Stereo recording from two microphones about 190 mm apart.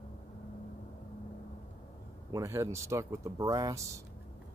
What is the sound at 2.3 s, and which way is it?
Speech, 15° right (ahead or behind).